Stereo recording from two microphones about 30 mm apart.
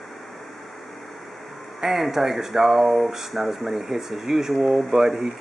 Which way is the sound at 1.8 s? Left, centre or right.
Centre.